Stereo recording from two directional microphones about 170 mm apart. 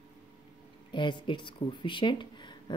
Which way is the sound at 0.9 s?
25° left (ahead or behind).